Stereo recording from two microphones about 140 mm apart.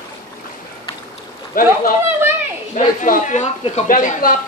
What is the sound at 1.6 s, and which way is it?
Speech, 90° left.